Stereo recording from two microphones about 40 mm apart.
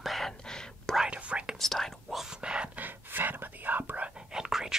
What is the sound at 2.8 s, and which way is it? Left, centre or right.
Speech, right.